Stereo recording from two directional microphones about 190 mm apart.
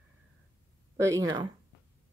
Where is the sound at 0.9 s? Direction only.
15° right (ahead or behind).